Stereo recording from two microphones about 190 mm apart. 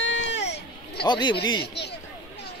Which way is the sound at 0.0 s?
75° left (ahead or behind).